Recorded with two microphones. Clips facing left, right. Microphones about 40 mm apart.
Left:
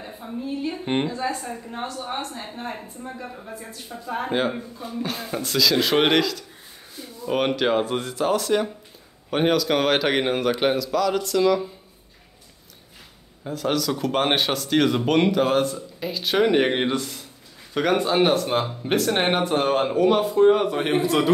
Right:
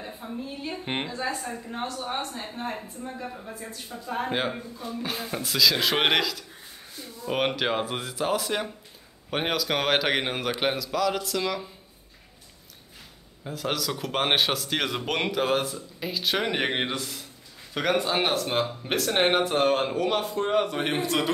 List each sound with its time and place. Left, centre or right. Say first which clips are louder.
0.0 s a woman's voice: left 3 dB; centre
13.4 s a woman's voice: left 5 dB; centre